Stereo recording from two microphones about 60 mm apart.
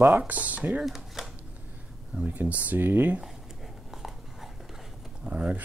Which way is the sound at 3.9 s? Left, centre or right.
Centre.